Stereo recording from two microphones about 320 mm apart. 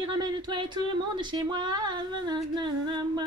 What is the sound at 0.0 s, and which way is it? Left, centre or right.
Speech, centre.